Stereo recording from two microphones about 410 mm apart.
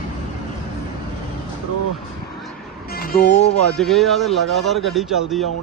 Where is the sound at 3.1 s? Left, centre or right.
Left.